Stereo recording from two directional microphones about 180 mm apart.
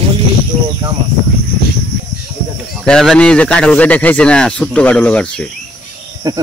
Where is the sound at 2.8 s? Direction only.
5° left (ahead or behind).